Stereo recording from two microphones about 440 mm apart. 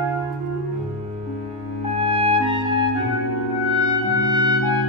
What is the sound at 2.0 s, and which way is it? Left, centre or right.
Music, centre.